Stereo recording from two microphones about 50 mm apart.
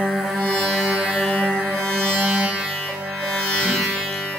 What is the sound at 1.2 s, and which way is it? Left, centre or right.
Music, left.